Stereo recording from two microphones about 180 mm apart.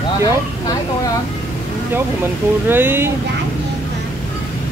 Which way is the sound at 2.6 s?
10° right (ahead or behind).